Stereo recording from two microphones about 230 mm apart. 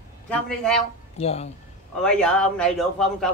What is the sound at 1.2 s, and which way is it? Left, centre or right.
Speech, left.